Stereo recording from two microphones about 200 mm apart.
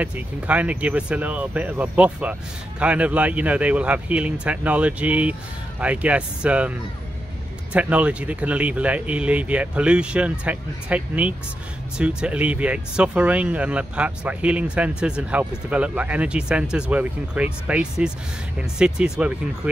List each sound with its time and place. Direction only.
0.0 s speech: 5° right (ahead or behind)
7.7 s speech: 5° right (ahead or behind)